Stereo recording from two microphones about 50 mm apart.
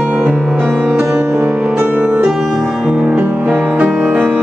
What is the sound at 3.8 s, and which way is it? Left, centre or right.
Music, right.